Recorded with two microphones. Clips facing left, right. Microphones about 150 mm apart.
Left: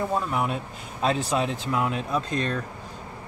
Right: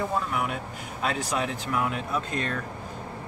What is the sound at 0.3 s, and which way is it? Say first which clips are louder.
Speech: left 3 dB; 30° left (ahead or behind).